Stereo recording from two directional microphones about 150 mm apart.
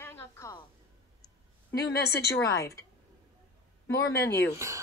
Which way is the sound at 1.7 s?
90° left.